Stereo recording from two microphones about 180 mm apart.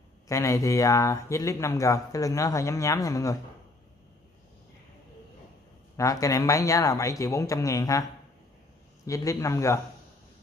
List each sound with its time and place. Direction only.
0.3 s speech: 15° left (ahead or behind)
5.9 s speech: 20° left (ahead or behind)
9.0 s speech: 20° left (ahead or behind)